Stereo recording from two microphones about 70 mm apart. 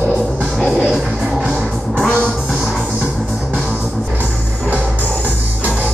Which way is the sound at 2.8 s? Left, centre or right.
Right.